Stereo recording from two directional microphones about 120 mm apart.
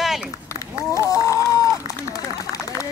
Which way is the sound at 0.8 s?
25° left (ahead or behind).